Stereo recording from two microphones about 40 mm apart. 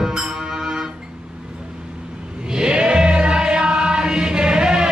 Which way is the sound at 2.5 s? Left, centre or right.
Centre.